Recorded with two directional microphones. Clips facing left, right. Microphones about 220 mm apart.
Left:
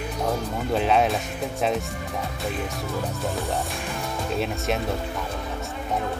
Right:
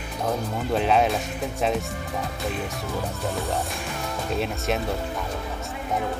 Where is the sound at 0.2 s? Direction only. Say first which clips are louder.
Right 1 dB; centre (ahead or behind).